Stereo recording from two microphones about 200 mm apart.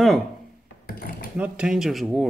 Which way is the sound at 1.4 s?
5° right (ahead or behind).